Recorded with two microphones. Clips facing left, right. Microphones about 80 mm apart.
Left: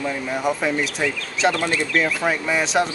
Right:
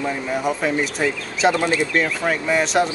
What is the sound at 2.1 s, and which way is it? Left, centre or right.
Speech, centre.